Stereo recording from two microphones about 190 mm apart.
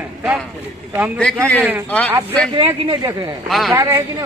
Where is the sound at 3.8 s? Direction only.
15° right (ahead or behind).